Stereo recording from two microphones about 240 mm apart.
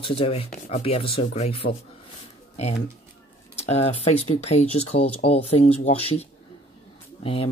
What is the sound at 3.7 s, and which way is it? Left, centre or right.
Speech, left.